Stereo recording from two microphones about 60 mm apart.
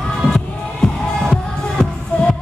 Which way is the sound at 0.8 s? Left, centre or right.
Centre.